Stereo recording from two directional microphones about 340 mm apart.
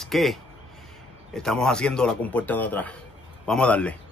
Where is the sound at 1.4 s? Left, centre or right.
Centre.